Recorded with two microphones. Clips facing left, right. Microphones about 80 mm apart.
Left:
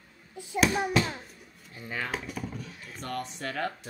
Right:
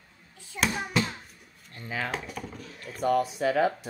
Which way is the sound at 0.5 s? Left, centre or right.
Centre.